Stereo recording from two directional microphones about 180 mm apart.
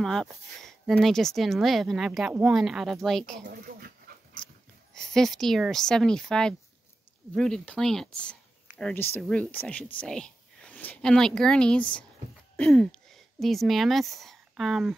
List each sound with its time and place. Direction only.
0.0 s speech: centre (ahead or behind)
3.4 s speech: 55° right (ahead or behind)
4.9 s speech: 5° left (ahead or behind)